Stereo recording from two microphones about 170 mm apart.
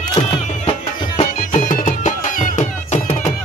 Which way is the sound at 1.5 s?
50° left (ahead or behind).